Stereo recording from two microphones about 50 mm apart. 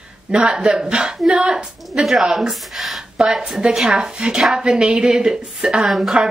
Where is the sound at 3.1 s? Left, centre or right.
Centre.